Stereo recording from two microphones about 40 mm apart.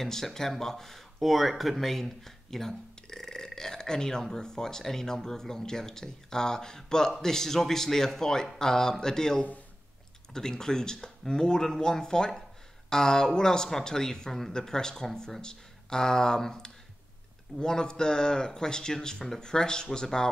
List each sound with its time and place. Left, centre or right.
0.0 s speech: centre